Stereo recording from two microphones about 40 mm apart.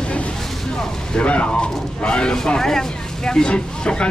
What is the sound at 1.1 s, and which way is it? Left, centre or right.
Speech, left.